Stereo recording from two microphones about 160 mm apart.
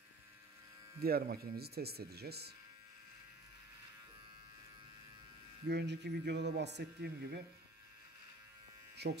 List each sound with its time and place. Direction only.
1.0 s speech: 75° right (ahead or behind)
5.7 s speech: 90° right
8.9 s speech: 90° right